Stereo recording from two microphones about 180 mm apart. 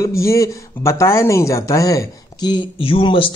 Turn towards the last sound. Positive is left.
turn(degrees=30)  # may be behind; listen again after turning